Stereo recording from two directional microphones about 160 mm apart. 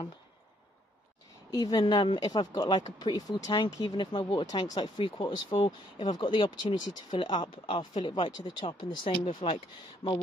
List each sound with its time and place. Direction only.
1.5 s speech: 25° left (ahead or behind)